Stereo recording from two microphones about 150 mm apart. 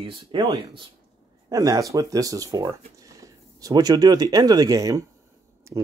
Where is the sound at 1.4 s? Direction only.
25° right (ahead or behind).